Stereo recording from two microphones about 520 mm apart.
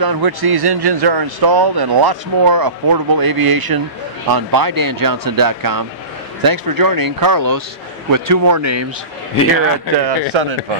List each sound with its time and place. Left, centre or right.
0.0 s a man's voice: right
10.0 s speech: right